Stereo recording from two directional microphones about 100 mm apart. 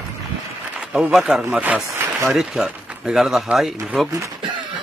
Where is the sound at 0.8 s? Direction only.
5° right (ahead or behind).